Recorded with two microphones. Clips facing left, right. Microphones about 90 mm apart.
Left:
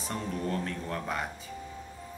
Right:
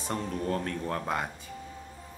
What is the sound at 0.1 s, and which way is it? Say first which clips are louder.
Speech: right 2 dB; 35° right (ahead or behind).